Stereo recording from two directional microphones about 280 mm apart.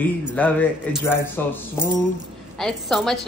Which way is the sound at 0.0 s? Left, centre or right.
Centre.